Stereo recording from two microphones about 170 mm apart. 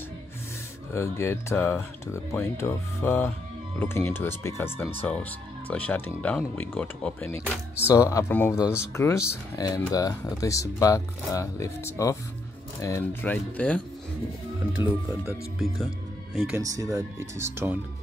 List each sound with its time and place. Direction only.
0.9 s speech: 15° left (ahead or behind)
14.8 s speech: 15° right (ahead or behind)
16.4 s speech: 20° right (ahead or behind)